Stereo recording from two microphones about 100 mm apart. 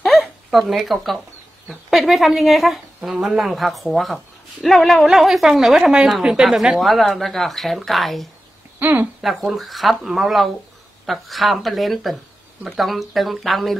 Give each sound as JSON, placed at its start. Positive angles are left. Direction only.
{"t": 0.0, "sound": "a sound", "side_deg": 0}
{"t": 1.7, "sound": "speech", "side_deg": 0}
{"t": 8.7, "sound": "speech", "side_deg": -20}
{"t": 9.2, "sound": "speech", "side_deg": 0}